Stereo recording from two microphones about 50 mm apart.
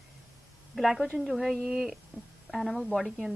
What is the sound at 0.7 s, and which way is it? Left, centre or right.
Speech, centre.